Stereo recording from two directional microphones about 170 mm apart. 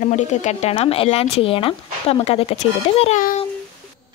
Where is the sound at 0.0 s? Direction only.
45° left (ahead or behind).